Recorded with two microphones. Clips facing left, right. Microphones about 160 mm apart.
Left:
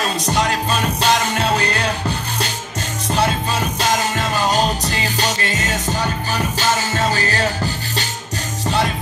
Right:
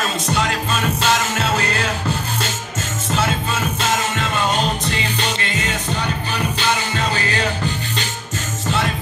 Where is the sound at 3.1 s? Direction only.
35° left (ahead or behind).